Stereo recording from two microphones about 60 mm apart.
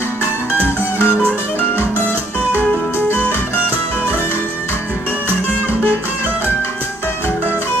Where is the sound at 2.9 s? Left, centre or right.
Left.